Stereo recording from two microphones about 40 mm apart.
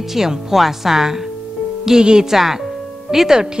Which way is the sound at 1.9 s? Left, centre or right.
Centre.